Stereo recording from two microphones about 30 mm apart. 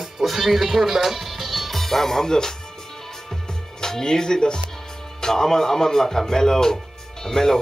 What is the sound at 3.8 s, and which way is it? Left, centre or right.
Speech, centre.